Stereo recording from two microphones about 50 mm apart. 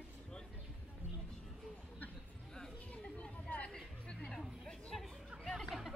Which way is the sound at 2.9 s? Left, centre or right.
Left.